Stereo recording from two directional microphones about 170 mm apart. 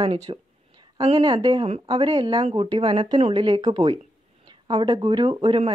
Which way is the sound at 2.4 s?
35° right (ahead or behind).